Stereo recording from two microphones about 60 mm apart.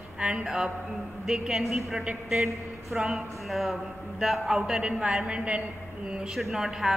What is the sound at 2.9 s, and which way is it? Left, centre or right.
Speech, centre.